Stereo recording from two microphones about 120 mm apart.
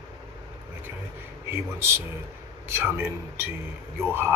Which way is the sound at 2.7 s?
20° right (ahead or behind).